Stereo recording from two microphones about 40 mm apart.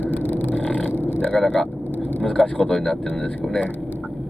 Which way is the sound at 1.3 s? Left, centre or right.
Centre.